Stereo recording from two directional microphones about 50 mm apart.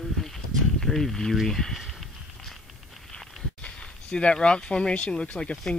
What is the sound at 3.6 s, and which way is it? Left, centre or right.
Speech, left.